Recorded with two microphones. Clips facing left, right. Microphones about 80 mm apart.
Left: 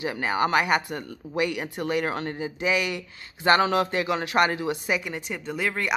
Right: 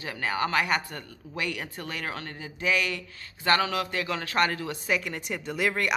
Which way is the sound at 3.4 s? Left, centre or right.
Left.